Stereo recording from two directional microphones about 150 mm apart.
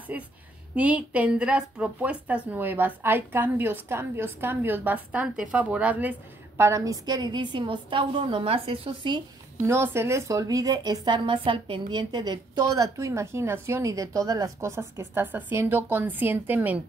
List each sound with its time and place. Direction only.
0.1 s speech: 10° right (ahead or behind); by 9.2 s 35° right (ahead or behind)
9.6 s a woman's voice: 15° right (ahead or behind)